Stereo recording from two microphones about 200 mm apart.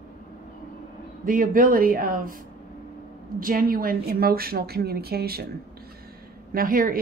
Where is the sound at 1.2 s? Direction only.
45° right (ahead or behind).